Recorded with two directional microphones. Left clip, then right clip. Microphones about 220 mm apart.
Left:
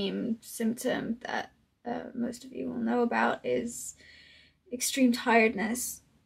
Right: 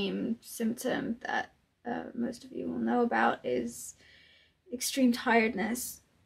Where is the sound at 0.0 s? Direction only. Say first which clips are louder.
Left 1 dB; 10° right (ahead or behind).